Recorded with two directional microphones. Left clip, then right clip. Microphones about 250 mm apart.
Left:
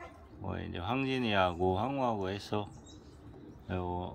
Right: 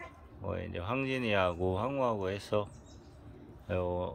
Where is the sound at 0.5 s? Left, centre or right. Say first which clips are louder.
Right 1 dB; centre.